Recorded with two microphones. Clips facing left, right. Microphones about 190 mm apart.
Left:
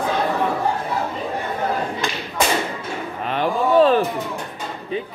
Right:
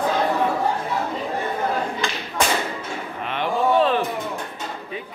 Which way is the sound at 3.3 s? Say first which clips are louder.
Left 2 dB; 40° left (ahead or behind).